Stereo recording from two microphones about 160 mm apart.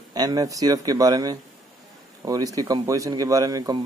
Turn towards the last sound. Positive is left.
turn(degrees=-25)  # may be behind; listen again after turning